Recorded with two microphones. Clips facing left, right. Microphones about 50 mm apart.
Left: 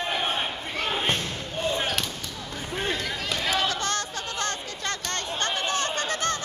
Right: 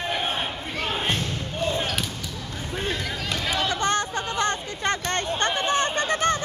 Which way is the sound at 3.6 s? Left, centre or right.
Right.